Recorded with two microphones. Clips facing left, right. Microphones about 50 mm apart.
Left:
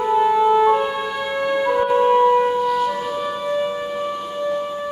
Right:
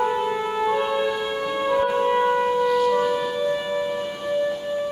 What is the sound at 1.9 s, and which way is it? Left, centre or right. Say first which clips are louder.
Wind instrument: left 5 dB; centre.